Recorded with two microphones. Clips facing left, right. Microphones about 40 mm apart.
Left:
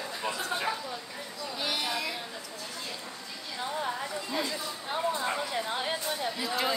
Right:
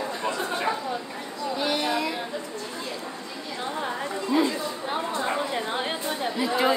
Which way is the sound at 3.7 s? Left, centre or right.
Centre.